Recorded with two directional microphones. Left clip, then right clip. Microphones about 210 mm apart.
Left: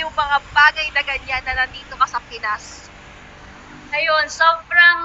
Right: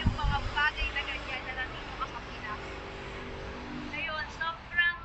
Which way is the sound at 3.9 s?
45° left (ahead or behind).